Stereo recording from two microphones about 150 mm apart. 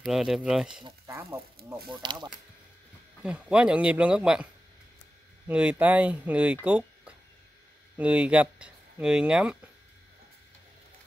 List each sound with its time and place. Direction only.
0.0 s speech: centre (ahead or behind)
0.8 s speech: 20° right (ahead or behind)
2.0 s speech: 30° right (ahead or behind)
3.2 s speech: 5° right (ahead or behind)
5.5 s speech: 10° right (ahead or behind)